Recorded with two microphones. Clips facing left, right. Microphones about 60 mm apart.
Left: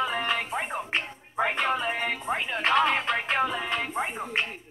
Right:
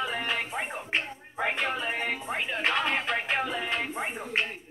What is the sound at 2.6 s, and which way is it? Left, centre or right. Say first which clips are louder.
Music: left 5 dB; centre.